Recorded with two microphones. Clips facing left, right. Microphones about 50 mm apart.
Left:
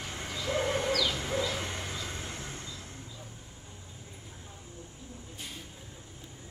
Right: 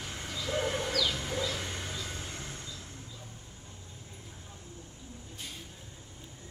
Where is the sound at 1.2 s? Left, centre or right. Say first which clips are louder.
Left 2 dB; centre.